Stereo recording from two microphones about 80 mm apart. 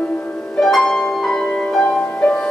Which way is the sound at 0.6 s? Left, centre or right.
Centre.